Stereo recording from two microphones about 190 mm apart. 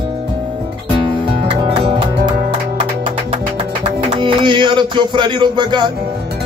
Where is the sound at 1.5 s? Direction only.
25° right (ahead or behind).